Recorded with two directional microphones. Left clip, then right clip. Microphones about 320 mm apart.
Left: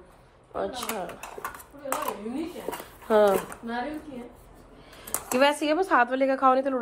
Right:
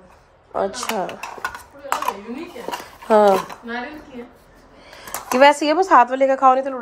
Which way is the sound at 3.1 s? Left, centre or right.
Centre.